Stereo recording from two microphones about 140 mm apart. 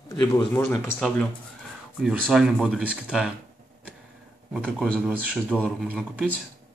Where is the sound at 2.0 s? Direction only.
5° right (ahead or behind).